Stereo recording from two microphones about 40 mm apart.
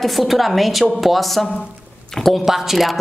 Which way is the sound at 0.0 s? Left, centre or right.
Centre.